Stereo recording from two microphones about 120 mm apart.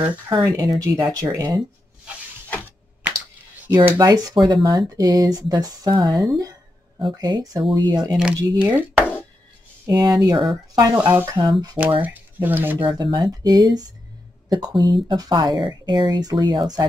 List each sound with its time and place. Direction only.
0.3 s speech: 35° right (ahead or behind)
3.7 s speech: 30° right (ahead or behind)
8.2 s speech: 10° right (ahead or behind)
9.8 s speech: 30° right (ahead or behind)
11.0 s speech: 15° right (ahead or behind)
11.3 s speech: 35° right (ahead or behind)
12.0 s speech: 15° right (ahead or behind)
12.7 s speech: 45° right (ahead or behind)